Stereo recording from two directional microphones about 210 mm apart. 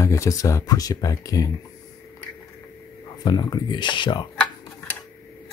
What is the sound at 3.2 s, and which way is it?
Speech, 20° left (ahead or behind).